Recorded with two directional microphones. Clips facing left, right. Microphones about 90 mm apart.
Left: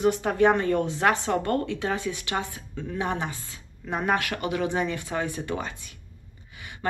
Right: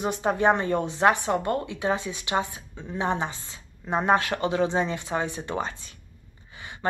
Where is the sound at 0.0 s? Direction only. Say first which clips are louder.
Left 2 dB; 20° right (ahead or behind).